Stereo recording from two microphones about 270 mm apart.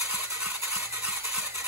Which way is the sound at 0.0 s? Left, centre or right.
Centre.